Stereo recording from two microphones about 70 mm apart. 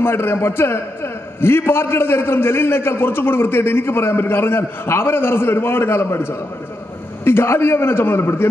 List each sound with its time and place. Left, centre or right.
0.0 s a man's voice: left